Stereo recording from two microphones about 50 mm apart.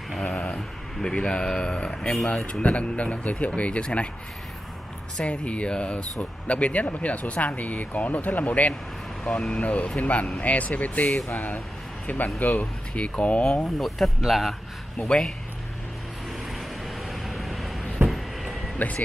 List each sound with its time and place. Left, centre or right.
0.3 s a sound: left
1.0 s speech: left
5.1 s speech: left
9.2 s speech: centre
9.6 s speech: left
13.7 s speech: centre
16.4 s vehicle: centre
18.8 s speech: left